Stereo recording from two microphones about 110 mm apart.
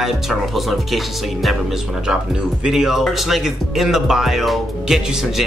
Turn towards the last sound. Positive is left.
turn(degrees=0)  # may be behind; listen again after turning